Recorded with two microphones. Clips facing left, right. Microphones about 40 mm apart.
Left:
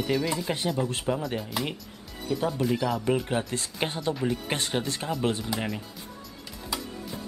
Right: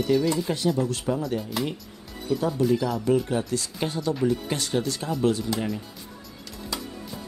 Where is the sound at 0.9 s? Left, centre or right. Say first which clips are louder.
Right 2 dB; left.